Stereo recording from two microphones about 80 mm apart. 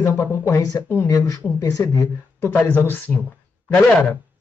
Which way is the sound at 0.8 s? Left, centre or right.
Left.